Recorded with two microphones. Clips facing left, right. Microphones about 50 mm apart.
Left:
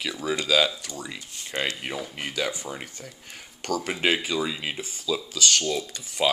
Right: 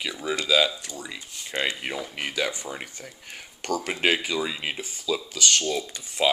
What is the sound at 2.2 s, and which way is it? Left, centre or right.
Speech, right.